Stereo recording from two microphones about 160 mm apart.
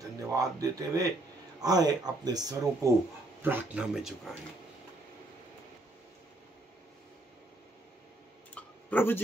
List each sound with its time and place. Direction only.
0.4 s speech: 20° right (ahead or behind)
3.4 s speech: 10° right (ahead or behind)
8.5 s a sound: 10° left (ahead or behind)